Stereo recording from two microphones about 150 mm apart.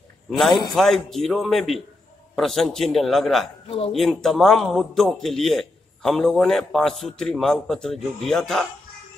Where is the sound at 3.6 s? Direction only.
40° left (ahead or behind).